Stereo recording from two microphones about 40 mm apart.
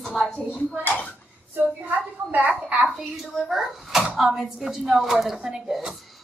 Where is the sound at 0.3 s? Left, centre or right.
Left.